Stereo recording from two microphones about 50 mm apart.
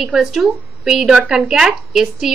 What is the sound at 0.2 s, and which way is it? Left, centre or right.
A woman's voice, centre.